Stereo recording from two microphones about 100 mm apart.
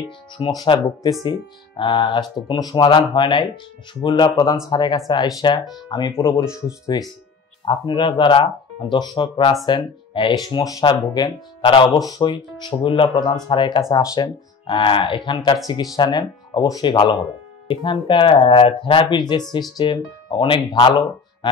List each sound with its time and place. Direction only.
0.4 s speech: 50° left (ahead or behind)
5.4 s speech: 50° left (ahead or behind)
10.9 s speech: 40° left (ahead or behind)
11.6 s speech: 50° left (ahead or behind)
12.0 s speech: 35° left (ahead or behind)
12.3 s speech: 50° left (ahead or behind)
13.8 s speech: 35° left (ahead or behind)
14.7 s speech: 55° left (ahead or behind); by 16.8 s 40° left (ahead or behind)
16.8 s speech: 50° left (ahead or behind)